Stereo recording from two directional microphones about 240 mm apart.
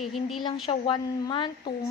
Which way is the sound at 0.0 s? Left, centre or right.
Centre.